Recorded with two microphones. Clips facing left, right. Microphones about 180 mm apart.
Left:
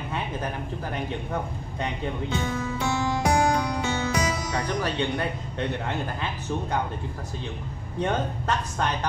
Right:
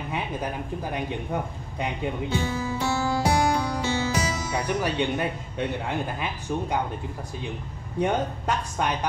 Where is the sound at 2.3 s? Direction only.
30° right (ahead or behind).